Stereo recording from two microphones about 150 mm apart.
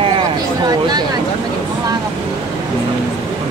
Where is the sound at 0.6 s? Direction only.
30° right (ahead or behind).